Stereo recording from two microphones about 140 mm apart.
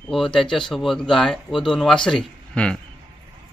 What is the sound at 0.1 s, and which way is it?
Speech, centre (ahead or behind).